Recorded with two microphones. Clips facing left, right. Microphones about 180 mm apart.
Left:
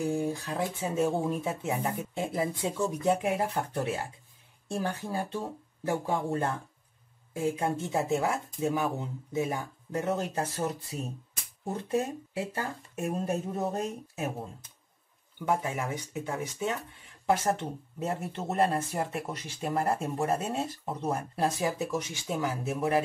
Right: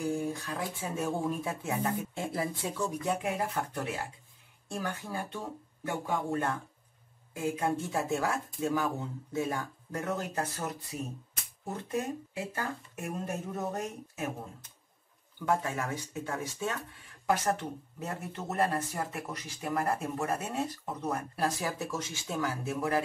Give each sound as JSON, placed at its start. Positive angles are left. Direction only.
{"t": 0.0, "sound": "speech", "side_deg": 25}
{"t": 15.3, "sound": "speech", "side_deg": 20}